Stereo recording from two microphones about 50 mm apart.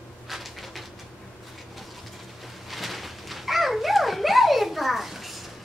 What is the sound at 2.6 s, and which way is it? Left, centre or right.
Dog, centre.